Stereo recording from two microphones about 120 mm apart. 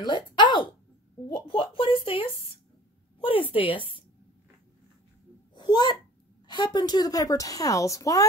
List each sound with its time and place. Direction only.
0.0 s a woman's voice: 40° left (ahead or behind)
5.5 s a sound: 40° left (ahead or behind)
6.4 s a woman's voice: 35° left (ahead or behind)